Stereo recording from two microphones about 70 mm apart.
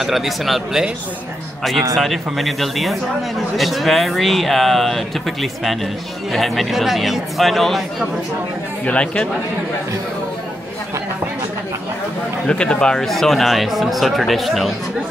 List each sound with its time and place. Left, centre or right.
0.0 s a man's voice: centre
2.0 s a man's voice: centre
8.8 s speech: centre
12.4 s a man's voice: centre